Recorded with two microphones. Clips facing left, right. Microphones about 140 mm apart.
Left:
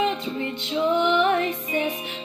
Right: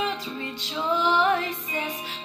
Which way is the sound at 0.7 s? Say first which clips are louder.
Left 4 dB; 25° left (ahead or behind).